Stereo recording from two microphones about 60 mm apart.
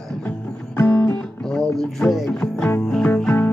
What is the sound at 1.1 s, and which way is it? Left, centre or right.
Music, centre.